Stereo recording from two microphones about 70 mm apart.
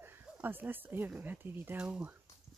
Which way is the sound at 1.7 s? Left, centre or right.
Centre.